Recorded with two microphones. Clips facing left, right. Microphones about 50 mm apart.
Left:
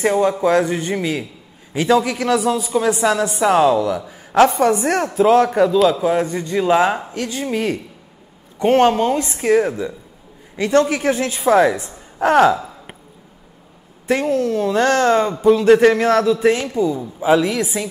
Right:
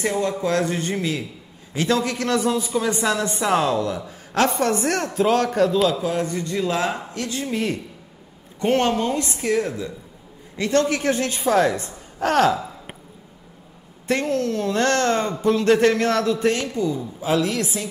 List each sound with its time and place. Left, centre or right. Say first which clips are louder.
0.0 s a man's voice: left 6 dB; left
14.0 s a man's voice: left 4 dB; centre
16.5 s speech: left 4 dB; left